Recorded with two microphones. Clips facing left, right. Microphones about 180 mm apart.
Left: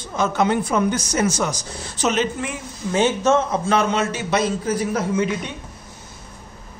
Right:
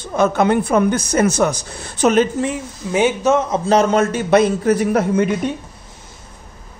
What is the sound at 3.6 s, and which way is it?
A man's voice, 40° right (ahead or behind).